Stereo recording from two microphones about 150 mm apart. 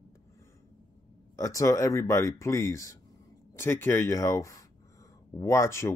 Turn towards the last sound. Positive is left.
turn(degrees=20)  # may be behind; listen again after turning